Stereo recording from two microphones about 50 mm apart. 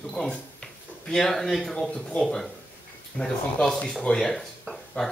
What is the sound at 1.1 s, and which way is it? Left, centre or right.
Speech, centre.